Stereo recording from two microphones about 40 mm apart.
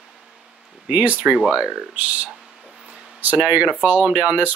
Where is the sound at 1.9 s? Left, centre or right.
Right.